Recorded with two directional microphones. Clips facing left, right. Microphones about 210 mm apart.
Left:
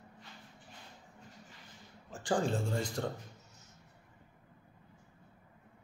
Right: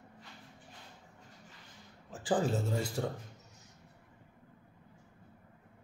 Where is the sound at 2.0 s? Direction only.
Centre (ahead or behind).